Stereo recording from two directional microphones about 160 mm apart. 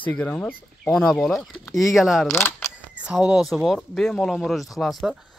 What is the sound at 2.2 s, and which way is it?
Speech, 15° left (ahead or behind).